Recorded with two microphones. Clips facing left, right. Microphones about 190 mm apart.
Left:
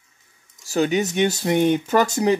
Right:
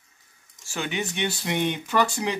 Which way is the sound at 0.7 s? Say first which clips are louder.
Left 10 dB; 40° left (ahead or behind).